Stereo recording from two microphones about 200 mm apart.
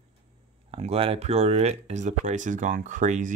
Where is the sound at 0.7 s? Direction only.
30° right (ahead or behind).